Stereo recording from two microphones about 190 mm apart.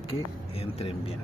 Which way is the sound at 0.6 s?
30° left (ahead or behind).